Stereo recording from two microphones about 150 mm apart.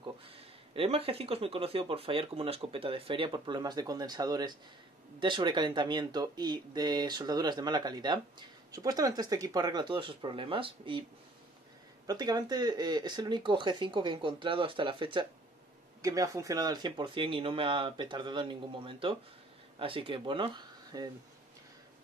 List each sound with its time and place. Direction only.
0.7 s speech: 40° right (ahead or behind)
12.1 s speech: 25° right (ahead or behind)
16.0 s speech: 20° right (ahead or behind)